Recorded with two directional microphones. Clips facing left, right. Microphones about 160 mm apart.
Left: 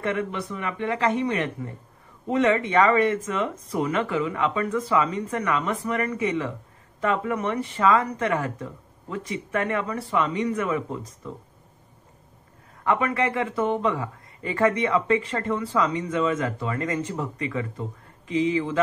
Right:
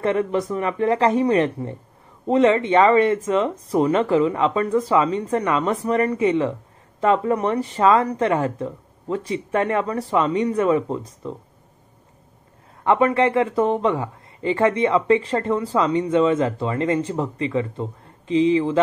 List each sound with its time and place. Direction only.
0.0 s speech: 35° right (ahead or behind)
12.8 s speech: 30° right (ahead or behind)